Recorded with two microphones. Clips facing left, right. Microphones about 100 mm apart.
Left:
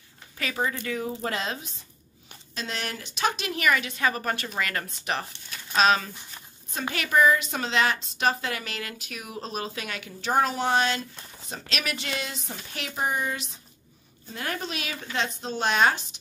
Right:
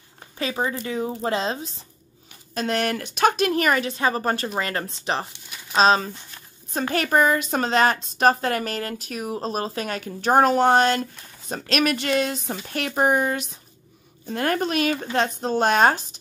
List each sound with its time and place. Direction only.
0.4 s a woman's voice: 25° right (ahead or behind)
2.5 s a woman's voice: 50° right (ahead or behind); by 6.1 s 30° right (ahead or behind)
6.7 s a woman's voice: 40° right (ahead or behind)